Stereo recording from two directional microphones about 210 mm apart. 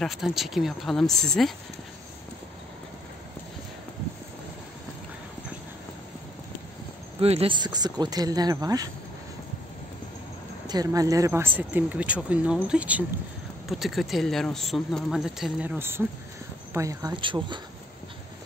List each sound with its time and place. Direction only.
0.0 s speech: centre (ahead or behind)
7.2 s speech: 30° right (ahead or behind)
10.7 s speech: 15° right (ahead or behind)